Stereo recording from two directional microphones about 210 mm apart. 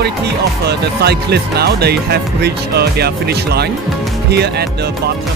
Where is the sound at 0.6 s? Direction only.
50° right (ahead or behind).